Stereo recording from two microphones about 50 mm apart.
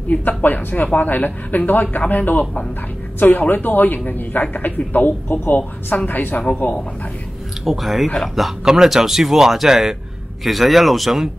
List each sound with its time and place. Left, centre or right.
0.1 s speech: left
7.6 s speech: centre